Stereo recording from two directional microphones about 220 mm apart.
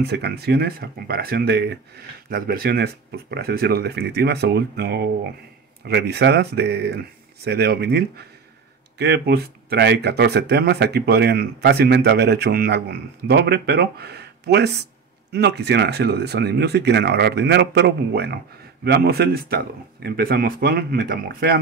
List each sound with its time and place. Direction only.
0.0 s speech: 50° right (ahead or behind)